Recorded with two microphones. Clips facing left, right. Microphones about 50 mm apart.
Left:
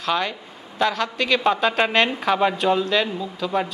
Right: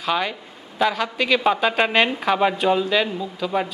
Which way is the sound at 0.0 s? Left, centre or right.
Centre.